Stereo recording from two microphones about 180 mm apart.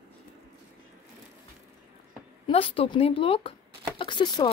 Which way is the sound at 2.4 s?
30° left (ahead or behind).